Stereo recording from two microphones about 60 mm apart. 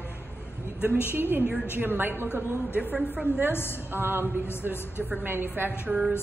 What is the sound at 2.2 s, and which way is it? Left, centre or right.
Speech, left.